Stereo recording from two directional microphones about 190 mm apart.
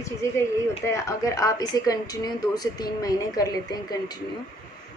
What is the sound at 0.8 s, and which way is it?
A woman's voice, 15° left (ahead or behind).